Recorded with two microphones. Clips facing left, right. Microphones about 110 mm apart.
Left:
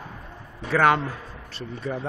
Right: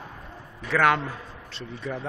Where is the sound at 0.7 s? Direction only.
5° left (ahead or behind).